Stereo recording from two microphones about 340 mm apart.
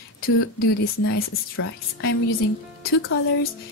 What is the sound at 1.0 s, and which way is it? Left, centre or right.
Speech, left.